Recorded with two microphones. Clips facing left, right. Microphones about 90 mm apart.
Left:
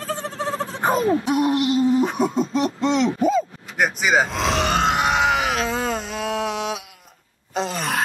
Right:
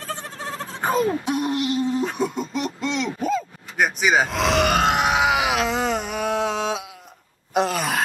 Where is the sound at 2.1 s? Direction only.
25° left (ahead or behind).